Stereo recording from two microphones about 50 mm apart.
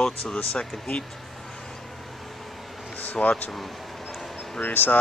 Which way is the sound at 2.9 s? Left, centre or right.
Left.